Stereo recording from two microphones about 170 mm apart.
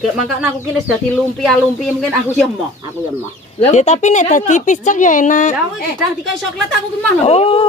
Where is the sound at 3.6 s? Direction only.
40° left (ahead or behind).